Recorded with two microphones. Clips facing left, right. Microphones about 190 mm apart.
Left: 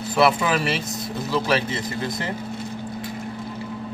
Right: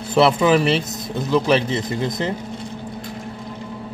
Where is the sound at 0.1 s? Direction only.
20° right (ahead or behind).